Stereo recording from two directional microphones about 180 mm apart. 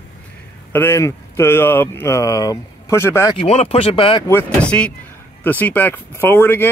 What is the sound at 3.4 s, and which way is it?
Speech, 35° left (ahead or behind).